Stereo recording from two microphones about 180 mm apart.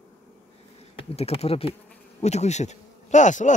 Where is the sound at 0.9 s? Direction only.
35° left (ahead or behind).